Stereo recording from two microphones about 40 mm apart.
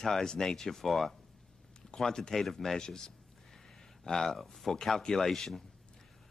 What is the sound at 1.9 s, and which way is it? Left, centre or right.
Speech, centre.